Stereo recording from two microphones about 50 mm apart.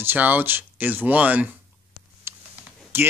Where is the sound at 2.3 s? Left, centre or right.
Right.